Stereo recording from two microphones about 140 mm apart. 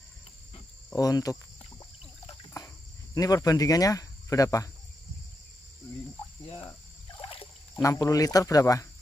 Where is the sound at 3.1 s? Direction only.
25° left (ahead or behind).